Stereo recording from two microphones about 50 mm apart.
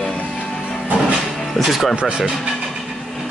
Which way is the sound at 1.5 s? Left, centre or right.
Centre.